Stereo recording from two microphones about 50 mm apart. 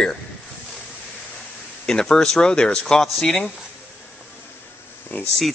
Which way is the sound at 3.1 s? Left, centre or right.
Centre.